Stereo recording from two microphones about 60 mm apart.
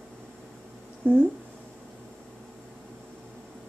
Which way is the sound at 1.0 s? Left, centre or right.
Right.